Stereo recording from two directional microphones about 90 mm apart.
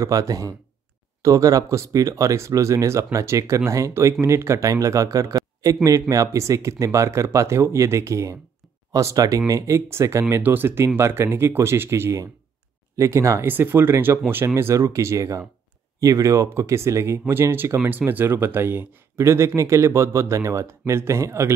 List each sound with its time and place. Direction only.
0.0 s speech: 40° right (ahead or behind)
13.5 s speech: 20° right (ahead or behind)